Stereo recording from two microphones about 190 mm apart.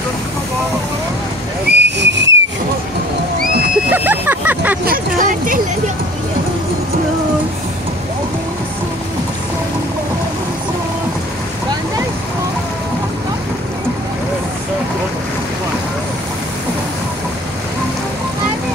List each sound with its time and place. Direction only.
1.7 s hiss: 65° right (ahead or behind)
3.9 s vehicle: 10° right (ahead or behind)
4.8 s a sound: 45° right (ahead or behind)